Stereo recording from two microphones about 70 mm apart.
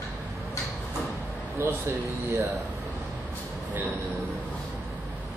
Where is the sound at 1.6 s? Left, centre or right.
Right.